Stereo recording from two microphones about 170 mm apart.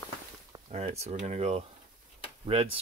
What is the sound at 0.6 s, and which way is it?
Speech, 40° right (ahead or behind).